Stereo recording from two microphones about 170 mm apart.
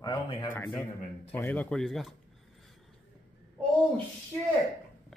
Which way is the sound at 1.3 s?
10° left (ahead or behind).